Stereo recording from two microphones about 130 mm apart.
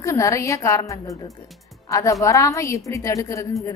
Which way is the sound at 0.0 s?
25° left (ahead or behind).